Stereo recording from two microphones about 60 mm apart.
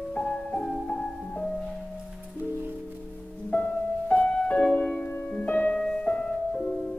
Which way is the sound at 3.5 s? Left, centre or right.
Left.